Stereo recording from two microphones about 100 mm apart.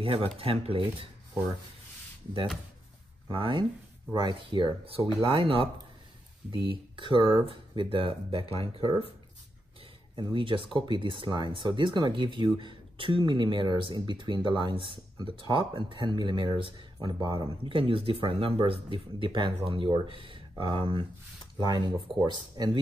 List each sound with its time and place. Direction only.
0.0 s speech: 70° right (ahead or behind)
3.3 s speech: 60° right (ahead or behind)
6.7 s speech: 55° right (ahead or behind)
10.1 s speech: 55° right (ahead or behind)
21.5 s speech: 45° right (ahead or behind)